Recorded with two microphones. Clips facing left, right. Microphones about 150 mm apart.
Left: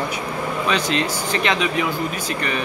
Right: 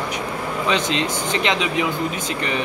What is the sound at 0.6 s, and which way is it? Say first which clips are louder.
Speech: right 1 dB; 20° right (ahead or behind).